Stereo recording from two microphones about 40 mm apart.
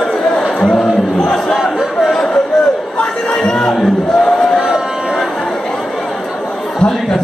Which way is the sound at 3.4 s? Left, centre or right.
Centre.